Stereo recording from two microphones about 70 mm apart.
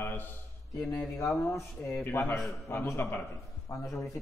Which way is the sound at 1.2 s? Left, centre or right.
Left.